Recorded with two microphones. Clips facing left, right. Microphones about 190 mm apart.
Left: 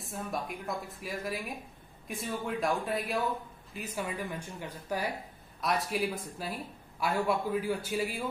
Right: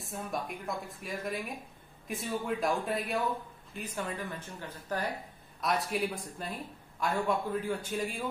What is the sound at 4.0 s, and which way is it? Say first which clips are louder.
Speech: left 2 dB; 10° left (ahead or behind).